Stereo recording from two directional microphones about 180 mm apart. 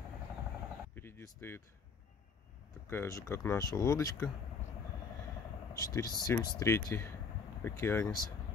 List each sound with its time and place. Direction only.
0.9 s a sound: 15° left (ahead or behind)
2.9 s speech: 15° left (ahead or behind)
5.7 s speech: 20° left (ahead or behind)